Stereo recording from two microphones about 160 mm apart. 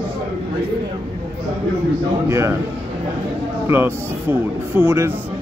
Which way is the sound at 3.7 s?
15° right (ahead or behind).